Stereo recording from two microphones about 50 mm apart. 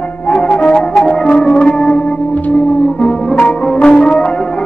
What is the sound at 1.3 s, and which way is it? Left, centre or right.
Music, centre.